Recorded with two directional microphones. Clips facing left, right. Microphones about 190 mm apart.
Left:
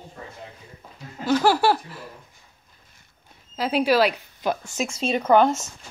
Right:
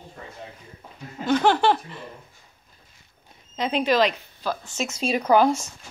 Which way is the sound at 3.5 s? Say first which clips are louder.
Left 2 dB; 5° left (ahead or behind).